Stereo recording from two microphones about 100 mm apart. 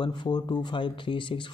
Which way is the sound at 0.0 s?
45° left (ahead or behind).